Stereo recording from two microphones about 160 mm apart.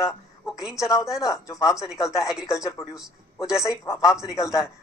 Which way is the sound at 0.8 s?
20° left (ahead or behind).